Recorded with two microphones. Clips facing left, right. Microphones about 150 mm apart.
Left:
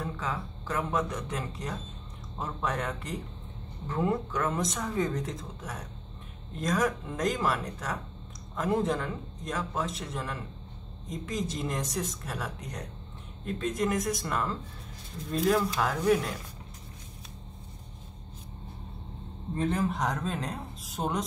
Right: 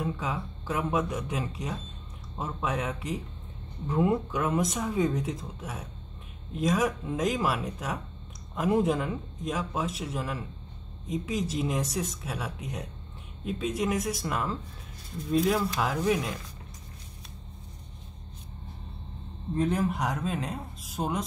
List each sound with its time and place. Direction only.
0.0 s speech: 10° right (ahead or behind)
19.6 s speech: centre (ahead or behind)